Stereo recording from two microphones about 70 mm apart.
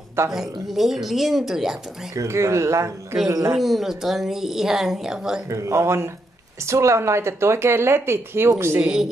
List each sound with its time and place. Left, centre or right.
0.3 s a woman's voice: centre
2.1 s a man's voice: right
3.3 s a man's voice: right
3.5 s a woman's voice: centre
5.5 s a man's voice: right
8.8 s a woman's voice: centre